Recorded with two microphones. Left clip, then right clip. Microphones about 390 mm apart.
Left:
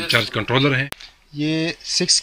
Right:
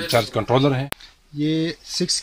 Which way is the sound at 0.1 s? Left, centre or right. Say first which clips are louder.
Even; centre.